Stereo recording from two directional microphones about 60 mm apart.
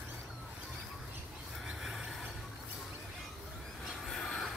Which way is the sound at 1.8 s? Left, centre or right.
Centre.